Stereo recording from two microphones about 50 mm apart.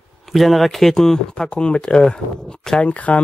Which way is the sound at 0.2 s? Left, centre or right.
Centre.